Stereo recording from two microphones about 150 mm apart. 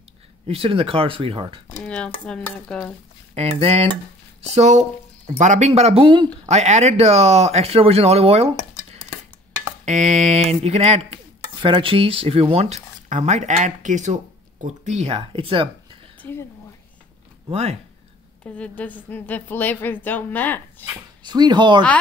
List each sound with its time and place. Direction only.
0.5 s speech: 40° right (ahead or behind)
1.8 s speech: 5° left (ahead or behind)
3.3 s speech: 45° right (ahead or behind)
5.7 s speech: 40° right (ahead or behind)
6.4 s speech: 50° right (ahead or behind)
9.8 s speech: 50° right (ahead or behind)
11.6 s speech: 35° right (ahead or behind)
16.2 s speech: 15° left (ahead or behind)
17.5 s speech: 45° right (ahead or behind)
18.4 s a woman's voice: 10° left (ahead or behind)
21.2 s speech: 30° right (ahead or behind)